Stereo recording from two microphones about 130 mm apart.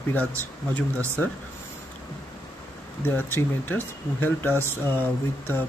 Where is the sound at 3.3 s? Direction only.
15° left (ahead or behind).